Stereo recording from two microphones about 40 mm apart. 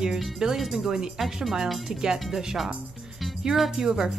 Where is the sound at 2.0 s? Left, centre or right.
Centre.